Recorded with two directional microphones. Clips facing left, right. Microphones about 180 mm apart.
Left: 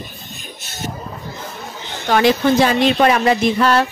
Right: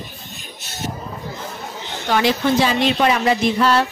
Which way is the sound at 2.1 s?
50° left (ahead or behind).